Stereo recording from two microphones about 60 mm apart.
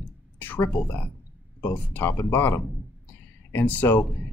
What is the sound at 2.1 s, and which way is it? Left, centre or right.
Speech, left.